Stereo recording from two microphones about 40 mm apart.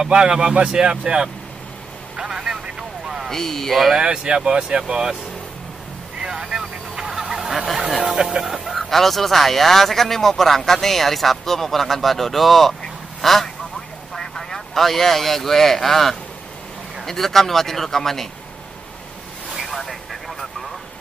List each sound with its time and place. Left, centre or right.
0.0 s speech: centre
3.3 s speech: centre
3.9 s speech: right
6.2 s vehicle: centre
8.0 s speech: centre
8.7 s speech: centre
19.7 s vehicle: centre